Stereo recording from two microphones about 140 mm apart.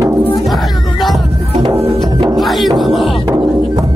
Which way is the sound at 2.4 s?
Centre (ahead or behind).